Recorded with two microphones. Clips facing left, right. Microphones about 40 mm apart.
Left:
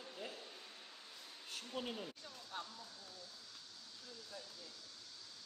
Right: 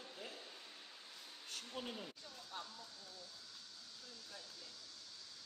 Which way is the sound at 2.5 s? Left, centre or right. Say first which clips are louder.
Left 2 dB; left.